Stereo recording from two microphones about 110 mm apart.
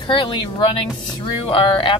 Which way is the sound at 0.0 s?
45° left (ahead or behind).